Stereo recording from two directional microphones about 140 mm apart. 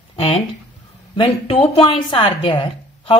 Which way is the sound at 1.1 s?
45° left (ahead or behind).